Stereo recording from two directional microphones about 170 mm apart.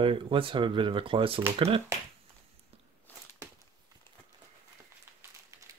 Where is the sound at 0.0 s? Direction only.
30° right (ahead or behind).